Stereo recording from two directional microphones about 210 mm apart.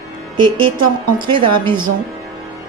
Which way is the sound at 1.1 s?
20° right (ahead or behind).